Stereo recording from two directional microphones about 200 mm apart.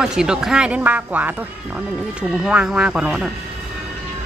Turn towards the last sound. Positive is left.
turn(degrees=-5)  # may be behind; listen again after turning